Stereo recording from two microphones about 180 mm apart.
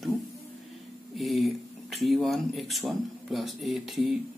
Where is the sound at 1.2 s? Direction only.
Centre (ahead or behind).